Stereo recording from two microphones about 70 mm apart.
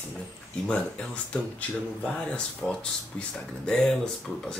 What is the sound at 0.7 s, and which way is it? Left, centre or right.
Speech, centre.